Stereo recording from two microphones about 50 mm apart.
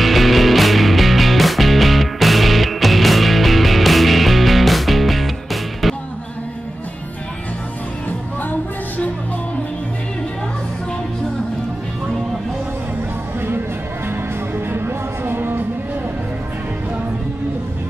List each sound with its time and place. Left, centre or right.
0.0 s music: centre
8.4 s music: left
14.7 s music: right